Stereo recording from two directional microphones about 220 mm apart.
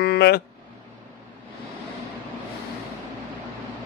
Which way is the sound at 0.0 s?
45° left (ahead or behind).